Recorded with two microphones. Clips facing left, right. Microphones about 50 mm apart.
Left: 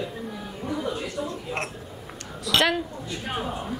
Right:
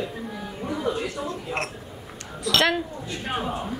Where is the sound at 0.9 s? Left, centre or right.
Right.